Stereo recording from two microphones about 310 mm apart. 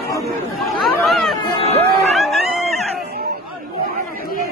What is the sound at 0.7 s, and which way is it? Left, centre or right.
Chatter, centre.